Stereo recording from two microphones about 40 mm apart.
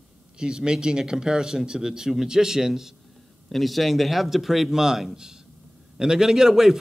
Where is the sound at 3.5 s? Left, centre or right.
Centre.